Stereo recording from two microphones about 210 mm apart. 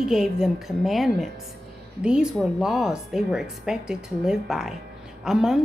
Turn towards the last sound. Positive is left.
turn(degrees=-5)  # may be behind; listen again after turning